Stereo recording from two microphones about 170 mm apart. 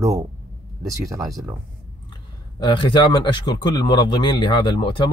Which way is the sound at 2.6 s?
30° left (ahead or behind).